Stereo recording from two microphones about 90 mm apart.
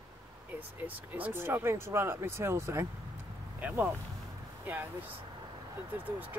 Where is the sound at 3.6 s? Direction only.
20° right (ahead or behind).